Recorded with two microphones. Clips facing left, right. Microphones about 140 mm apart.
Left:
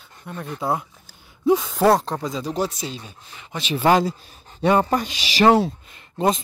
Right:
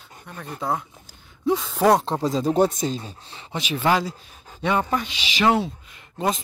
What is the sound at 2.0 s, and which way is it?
Speech, 25° right (ahead or behind).